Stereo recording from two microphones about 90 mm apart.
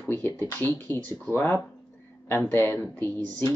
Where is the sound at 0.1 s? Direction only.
25° left (ahead or behind).